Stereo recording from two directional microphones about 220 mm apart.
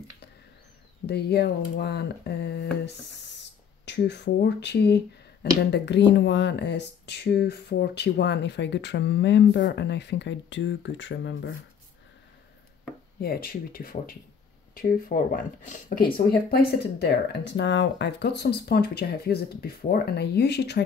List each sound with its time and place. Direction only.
1.0 s speech: 50° left (ahead or behind)
13.2 s speech: 45° left (ahead or behind)